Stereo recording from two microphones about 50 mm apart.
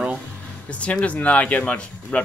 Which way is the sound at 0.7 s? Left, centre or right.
Left.